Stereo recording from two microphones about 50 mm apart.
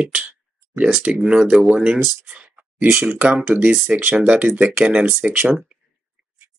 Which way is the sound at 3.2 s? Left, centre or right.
Right.